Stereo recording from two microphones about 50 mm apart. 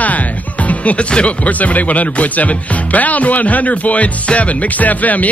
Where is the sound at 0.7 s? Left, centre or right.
Left.